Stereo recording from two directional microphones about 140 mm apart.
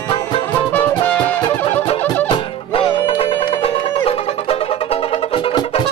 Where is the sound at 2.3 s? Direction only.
40° left (ahead or behind).